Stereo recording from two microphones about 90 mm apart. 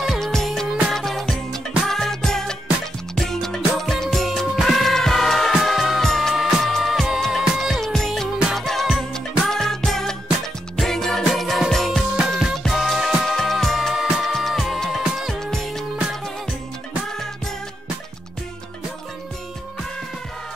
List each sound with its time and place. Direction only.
0.0 s music: centre (ahead or behind)